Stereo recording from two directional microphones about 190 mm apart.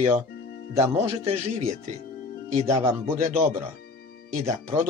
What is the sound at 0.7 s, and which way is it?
Speech, 15° right (ahead or behind).